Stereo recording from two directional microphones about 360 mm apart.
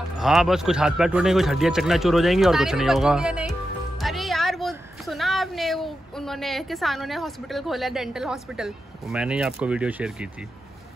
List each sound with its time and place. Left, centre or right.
0.2 s a woman's voice: centre